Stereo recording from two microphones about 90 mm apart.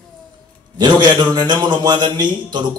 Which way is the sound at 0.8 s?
55° right (ahead or behind).